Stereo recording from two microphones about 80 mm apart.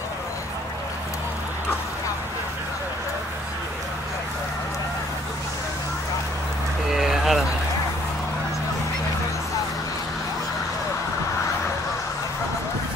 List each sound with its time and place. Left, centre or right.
6.9 s vehicle: centre